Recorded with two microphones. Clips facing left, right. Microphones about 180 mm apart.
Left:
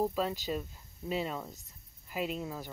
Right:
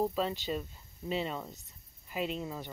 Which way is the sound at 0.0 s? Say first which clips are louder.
Even; 5° left (ahead or behind).